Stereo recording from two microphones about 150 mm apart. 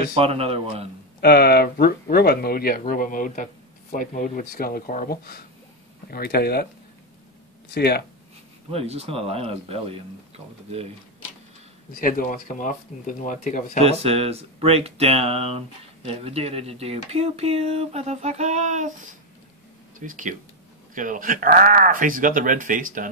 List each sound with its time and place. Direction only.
0.1 s speech: 40° right (ahead or behind)
1.2 s speech: 90° left
2.8 s speech: 65° left (ahead or behind); by 6.7 s 90° left
7.7 s speech: 90° left
8.7 s speech: 45° right (ahead or behind)
12.0 s speech: 65° left (ahead or behind)
13.7 s speech: 45° right (ahead or behind)
20.0 s speech: 60° right (ahead or behind)